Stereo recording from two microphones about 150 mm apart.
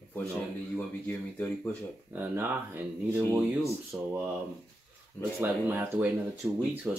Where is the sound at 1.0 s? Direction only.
10° left (ahead or behind).